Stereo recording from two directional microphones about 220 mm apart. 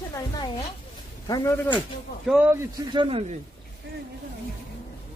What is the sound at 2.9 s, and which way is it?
Speech, 25° right (ahead or behind).